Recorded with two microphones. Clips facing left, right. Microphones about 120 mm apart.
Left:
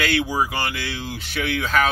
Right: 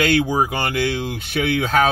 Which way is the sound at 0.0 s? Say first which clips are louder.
Right 4 dB; 50° right (ahead or behind).